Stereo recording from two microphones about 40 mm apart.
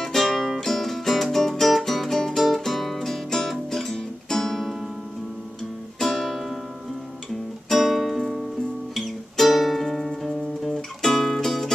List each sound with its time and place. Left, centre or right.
0.0 s music: centre
5.9 s music: centre
7.7 s music: centre